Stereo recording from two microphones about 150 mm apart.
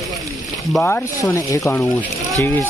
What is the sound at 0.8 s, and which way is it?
Speech, 15° left (ahead or behind).